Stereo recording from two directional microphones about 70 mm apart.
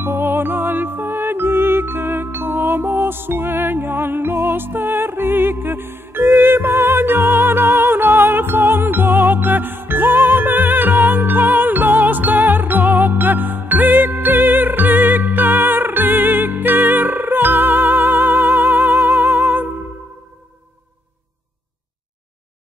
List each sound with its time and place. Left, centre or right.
0.3 s music: right
4.6 s music: right
18.7 s music: centre